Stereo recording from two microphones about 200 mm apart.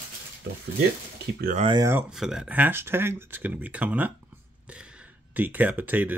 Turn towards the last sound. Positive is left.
turn(degrees=-10)  # may be behind; listen again after turning